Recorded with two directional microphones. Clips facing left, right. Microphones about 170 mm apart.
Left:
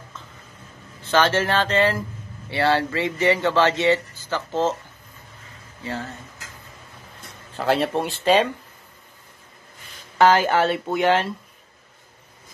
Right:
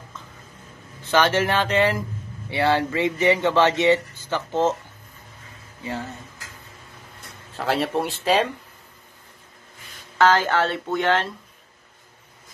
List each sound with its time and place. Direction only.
1.1 s speech: 15° right (ahead or behind)
7.5 s speech: centre (ahead or behind)
10.1 s speech: 15° left (ahead or behind)